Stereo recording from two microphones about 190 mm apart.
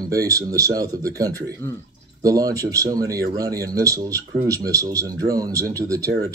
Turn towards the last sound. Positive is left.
turn(degrees=-15)  # may be behind; listen again after turning